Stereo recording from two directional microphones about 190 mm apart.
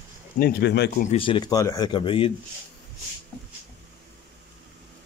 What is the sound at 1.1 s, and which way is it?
Speech, 25° left (ahead or behind).